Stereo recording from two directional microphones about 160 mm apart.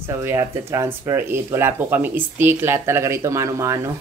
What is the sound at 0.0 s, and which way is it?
Speech, 15° right (ahead or behind).